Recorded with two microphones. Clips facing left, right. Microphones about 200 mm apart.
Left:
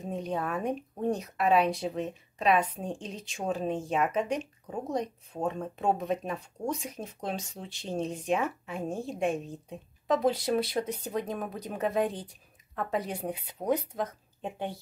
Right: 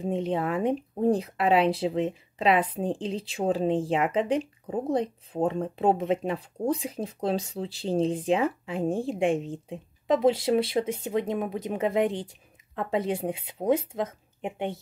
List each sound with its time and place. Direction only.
0.0 s speech: 25° right (ahead or behind)